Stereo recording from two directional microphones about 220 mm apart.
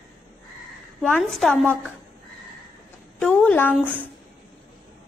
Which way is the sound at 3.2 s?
5° left (ahead or behind).